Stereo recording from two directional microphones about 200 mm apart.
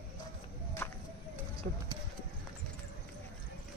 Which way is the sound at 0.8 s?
10° left (ahead or behind).